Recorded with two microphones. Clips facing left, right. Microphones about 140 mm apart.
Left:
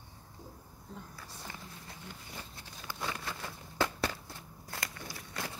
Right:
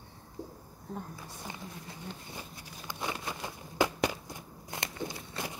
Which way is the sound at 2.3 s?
15° right (ahead or behind).